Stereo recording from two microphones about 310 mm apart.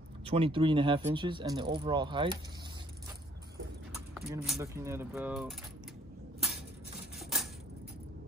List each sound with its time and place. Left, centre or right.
0.2 s speech: centre
3.9 s speech: centre
7.2 s a sound: centre